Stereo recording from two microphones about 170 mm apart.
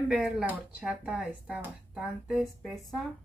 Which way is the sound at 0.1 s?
5° right (ahead or behind).